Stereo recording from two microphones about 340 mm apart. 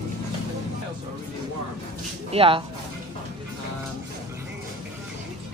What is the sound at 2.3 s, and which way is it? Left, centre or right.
Speech, centre.